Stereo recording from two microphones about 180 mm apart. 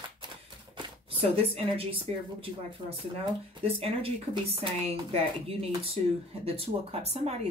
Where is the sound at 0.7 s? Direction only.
30° right (ahead or behind).